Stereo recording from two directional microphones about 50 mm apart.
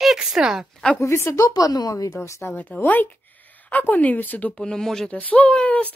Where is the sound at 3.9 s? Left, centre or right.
Left.